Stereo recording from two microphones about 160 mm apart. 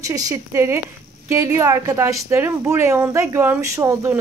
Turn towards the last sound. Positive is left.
turn(degrees=-20)  # may be behind; listen again after turning